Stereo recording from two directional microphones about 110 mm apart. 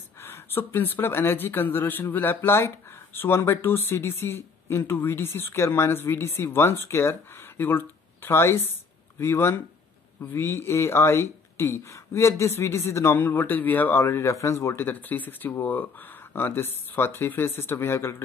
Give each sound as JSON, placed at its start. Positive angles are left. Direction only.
{"t": 0.2, "sound": "speech", "side_deg": 20}